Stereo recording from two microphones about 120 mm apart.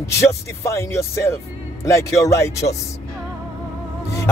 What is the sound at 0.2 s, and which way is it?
Speech, 25° left (ahead or behind).